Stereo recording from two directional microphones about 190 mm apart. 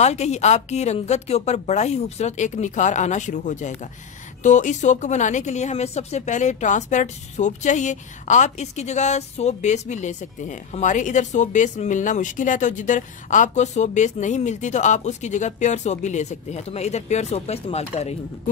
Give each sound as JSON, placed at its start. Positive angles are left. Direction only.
{"t": 0.0, "sound": "a woman's voice", "side_deg": 35}